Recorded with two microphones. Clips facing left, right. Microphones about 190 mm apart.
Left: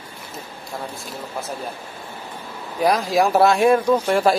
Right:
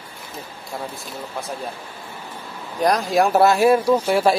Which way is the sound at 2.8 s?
Centre (ahead or behind).